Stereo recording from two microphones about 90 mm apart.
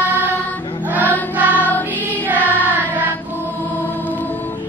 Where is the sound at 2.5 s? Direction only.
20° right (ahead or behind).